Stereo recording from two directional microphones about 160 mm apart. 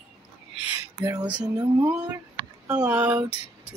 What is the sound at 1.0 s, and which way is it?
Speech, 25° right (ahead or behind).